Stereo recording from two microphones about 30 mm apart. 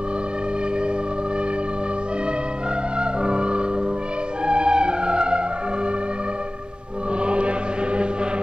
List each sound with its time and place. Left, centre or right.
3.0 s music: right
7.2 s choir: right